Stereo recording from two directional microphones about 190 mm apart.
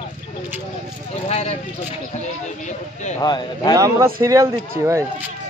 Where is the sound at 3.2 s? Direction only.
20° left (ahead or behind).